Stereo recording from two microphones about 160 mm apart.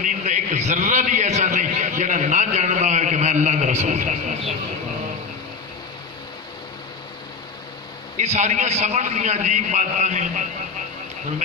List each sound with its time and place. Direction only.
0.0 s a man's voice: 50° right (ahead or behind)
8.2 s a man's voice: 45° right (ahead or behind)